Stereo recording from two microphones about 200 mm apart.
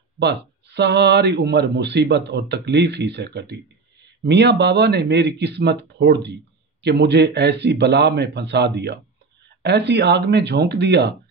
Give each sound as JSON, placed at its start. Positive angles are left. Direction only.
{"t": 0.2, "sound": "speech", "side_deg": -60}